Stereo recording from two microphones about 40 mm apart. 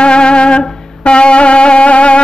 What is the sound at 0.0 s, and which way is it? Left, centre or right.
Music, left.